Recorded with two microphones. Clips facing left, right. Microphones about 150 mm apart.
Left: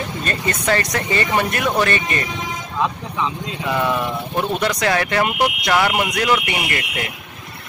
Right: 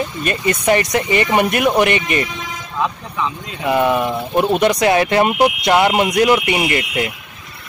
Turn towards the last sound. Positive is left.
turn(degrees=-20)  # may be behind; listen again after turning